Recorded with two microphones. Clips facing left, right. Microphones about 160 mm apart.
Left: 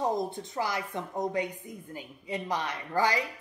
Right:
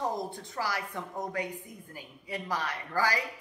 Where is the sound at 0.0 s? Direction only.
20° left (ahead or behind).